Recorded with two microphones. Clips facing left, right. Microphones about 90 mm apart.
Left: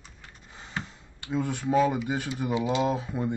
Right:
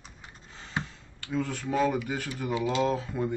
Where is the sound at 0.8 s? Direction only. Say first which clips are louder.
Right 2 dB; 20° right (ahead or behind).